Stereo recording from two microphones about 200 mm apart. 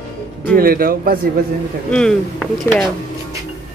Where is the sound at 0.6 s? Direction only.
45° right (ahead or behind).